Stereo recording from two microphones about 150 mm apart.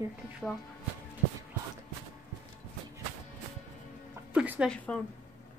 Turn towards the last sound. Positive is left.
turn(degrees=10)  # may be behind; listen again after turning